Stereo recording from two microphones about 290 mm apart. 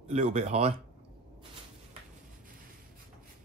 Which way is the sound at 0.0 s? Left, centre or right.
Right.